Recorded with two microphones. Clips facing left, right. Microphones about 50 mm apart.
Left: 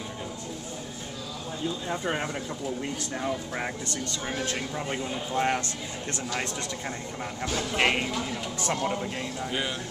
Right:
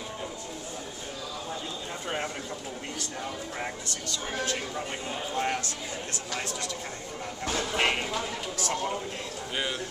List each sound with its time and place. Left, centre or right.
1.9 s speech: centre
5.3 s speech: left
7.7 s speech: centre
8.5 s speech: left
9.5 s speech: centre